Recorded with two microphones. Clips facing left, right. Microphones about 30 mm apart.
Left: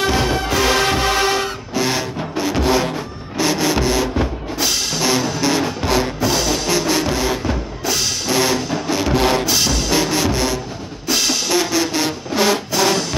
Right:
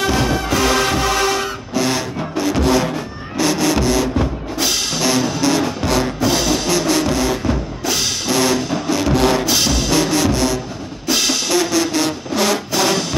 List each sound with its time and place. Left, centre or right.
0.0 s music: centre
4.6 s music: centre
6.2 s music: centre
6.8 s music: centre
7.8 s music: centre
8.3 s music: centre
9.5 s music: centre
9.9 s music: centre
11.1 s music: centre
11.5 s a sound: centre
12.7 s music: centre